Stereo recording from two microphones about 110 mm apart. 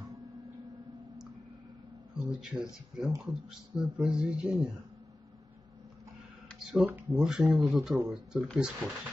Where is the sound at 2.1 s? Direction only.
10° right (ahead or behind).